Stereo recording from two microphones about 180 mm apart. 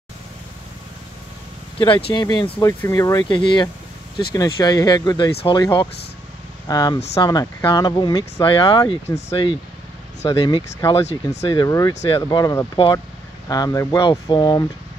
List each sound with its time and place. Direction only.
1.8 s speech: 30° left (ahead or behind)